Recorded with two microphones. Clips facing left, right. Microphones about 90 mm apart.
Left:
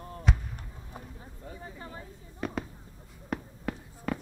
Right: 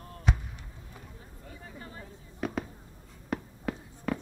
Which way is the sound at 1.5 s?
25° left (ahead or behind).